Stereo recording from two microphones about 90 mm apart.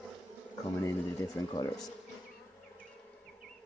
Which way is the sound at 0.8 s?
30° left (ahead or behind).